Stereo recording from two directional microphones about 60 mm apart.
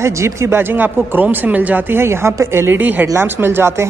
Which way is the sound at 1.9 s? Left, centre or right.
Right.